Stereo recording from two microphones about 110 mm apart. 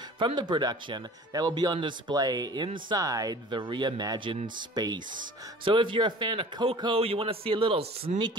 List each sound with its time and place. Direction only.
0.2 s speech: 45° right (ahead or behind)
3.0 s speech: 30° right (ahead or behind)
5.7 s a man's voice: 50° right (ahead or behind)